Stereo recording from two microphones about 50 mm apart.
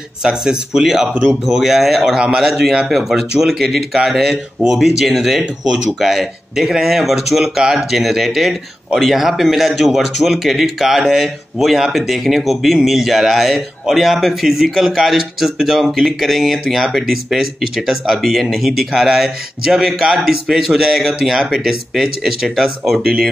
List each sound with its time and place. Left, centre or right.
0.2 s speech: centre
2.1 s speech: centre
2.9 s speech: centre